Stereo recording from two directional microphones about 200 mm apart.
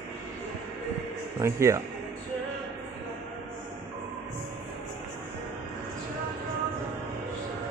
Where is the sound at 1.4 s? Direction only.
15° right (ahead or behind).